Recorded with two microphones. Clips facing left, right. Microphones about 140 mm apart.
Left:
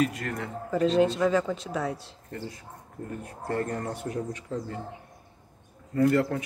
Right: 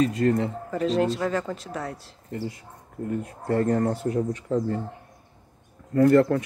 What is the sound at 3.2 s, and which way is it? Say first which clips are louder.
Speech: right 5 dB; 20° right (ahead or behind).